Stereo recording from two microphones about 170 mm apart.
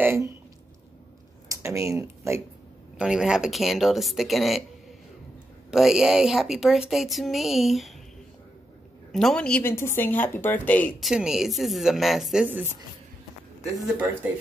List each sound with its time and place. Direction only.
0.0 s a sound: 15° right (ahead or behind)
1.5 s speech: 15° right (ahead or behind)
3.0 s speech: 5° right (ahead or behind)
5.7 s speech: centre (ahead or behind)
9.1 s speech: 5° left (ahead or behind)
11.1 s speech: 5° right (ahead or behind)